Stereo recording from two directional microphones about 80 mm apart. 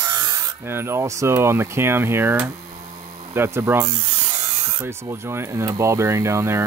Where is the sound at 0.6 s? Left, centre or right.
Right.